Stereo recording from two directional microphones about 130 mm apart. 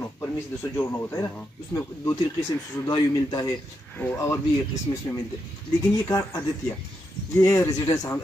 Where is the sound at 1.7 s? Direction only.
20° left (ahead or behind).